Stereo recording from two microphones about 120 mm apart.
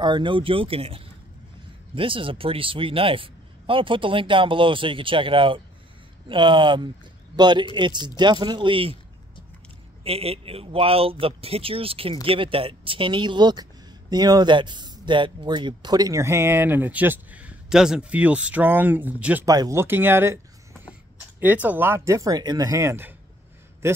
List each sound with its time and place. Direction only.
0.0 s speech: 40° right (ahead or behind)
10.0 s speech: 55° right (ahead or behind); by 19.4 s 15° right (ahead or behind)
19.4 s speech: 30° right (ahead or behind)
21.4 s speech: 15° right (ahead or behind)